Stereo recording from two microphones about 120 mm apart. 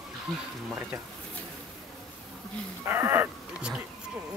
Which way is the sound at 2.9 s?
20° right (ahead or behind).